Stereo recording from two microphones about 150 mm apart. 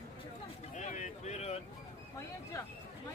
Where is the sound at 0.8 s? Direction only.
55° left (ahead or behind).